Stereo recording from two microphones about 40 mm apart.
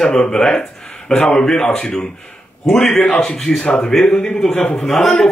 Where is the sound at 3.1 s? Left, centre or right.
Left.